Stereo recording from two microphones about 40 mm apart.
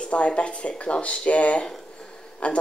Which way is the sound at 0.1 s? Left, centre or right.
Left.